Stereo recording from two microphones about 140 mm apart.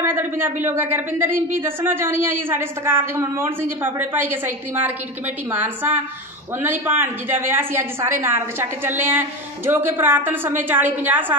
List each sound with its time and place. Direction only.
0.0 s a woman's voice: 15° right (ahead or behind)